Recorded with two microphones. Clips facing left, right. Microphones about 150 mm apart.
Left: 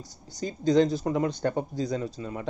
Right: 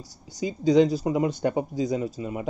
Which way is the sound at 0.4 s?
10° right (ahead or behind).